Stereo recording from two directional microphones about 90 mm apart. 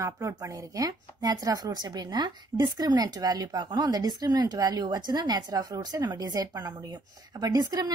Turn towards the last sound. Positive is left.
turn(degrees=-45)  # may be behind; listen again after turning